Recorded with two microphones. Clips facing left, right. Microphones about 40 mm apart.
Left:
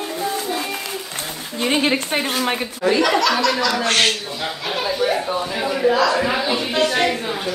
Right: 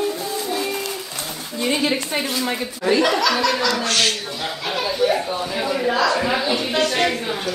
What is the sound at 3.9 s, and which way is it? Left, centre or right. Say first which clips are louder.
Speech: left 2 dB; left.